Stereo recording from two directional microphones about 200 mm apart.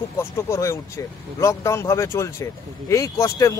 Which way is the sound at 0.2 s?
15° left (ahead or behind).